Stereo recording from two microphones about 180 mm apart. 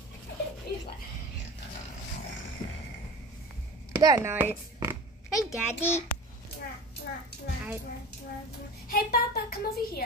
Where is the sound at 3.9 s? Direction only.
20° right (ahead or behind).